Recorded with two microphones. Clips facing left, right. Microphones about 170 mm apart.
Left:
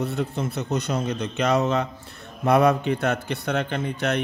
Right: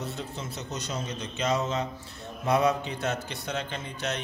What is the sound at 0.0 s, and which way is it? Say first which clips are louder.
A man's voice: left 9 dB; 60° left (ahead or behind).